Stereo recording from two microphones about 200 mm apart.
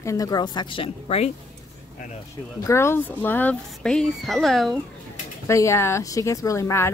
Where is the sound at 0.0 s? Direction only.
15° left (ahead or behind).